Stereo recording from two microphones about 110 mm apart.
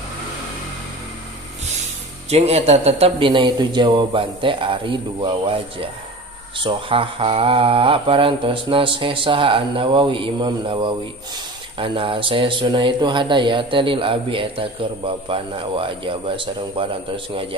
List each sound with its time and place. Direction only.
2.2 s speech: 70° right (ahead or behind)
3.3 s speech: 45° right (ahead or behind)